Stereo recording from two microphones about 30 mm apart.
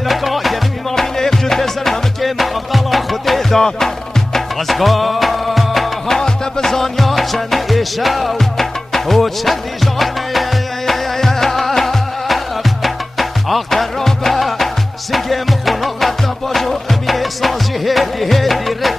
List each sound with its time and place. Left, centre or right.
0.1 s music: centre
0.9 s music: centre
2.2 s music: centre
4.6 s music: centre
6.0 s music: centre
7.0 s music: centre
13.7 s music: centre